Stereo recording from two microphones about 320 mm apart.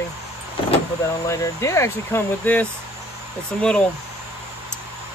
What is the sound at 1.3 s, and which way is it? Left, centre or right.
Speech, centre.